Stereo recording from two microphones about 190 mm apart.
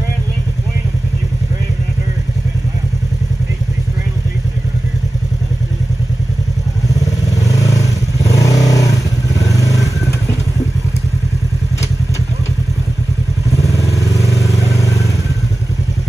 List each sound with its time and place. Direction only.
6.9 s vehicle: 20° left (ahead or behind)
13.5 s vehicle: 15° left (ahead or behind)